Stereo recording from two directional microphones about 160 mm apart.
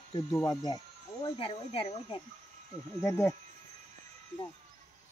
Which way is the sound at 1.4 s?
35° left (ahead or behind).